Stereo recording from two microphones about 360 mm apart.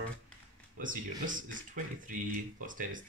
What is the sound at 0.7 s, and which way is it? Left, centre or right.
Speech, right.